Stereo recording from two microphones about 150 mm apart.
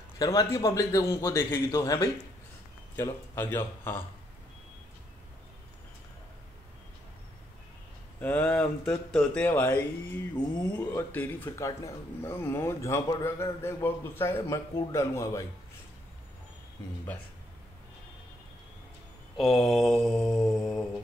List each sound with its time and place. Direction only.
0.2 s a man's voice: 25° left (ahead or behind)
8.2 s speech: 10° left (ahead or behind)
19.3 s mantra: centre (ahead or behind)